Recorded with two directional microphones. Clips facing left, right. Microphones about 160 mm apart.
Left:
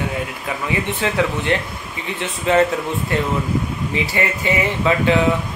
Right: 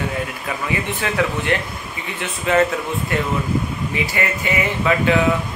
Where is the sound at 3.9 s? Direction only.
25° left (ahead or behind).